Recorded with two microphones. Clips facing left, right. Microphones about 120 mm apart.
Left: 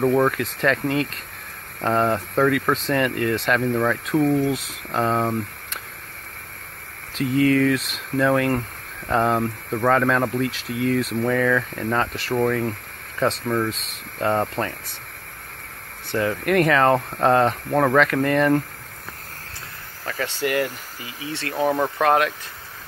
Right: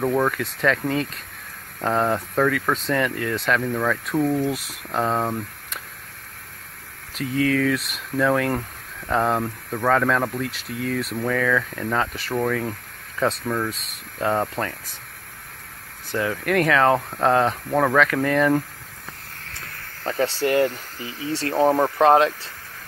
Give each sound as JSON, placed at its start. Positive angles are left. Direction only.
{"t": 0.0, "sound": "speech", "side_deg": 0}
{"t": 2.4, "sound": "speech", "side_deg": 10}
{"t": 7.2, "sound": "speech", "side_deg": 0}
{"t": 16.1, "sound": "speech", "side_deg": 0}
{"t": 20.1, "sound": "speech", "side_deg": -35}
{"t": 21.6, "sound": "speech", "side_deg": -20}